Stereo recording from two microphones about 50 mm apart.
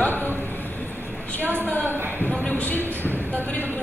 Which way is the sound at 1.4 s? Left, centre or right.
Right.